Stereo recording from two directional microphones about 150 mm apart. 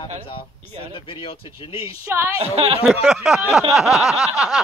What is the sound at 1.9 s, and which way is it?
Speech, 20° right (ahead or behind).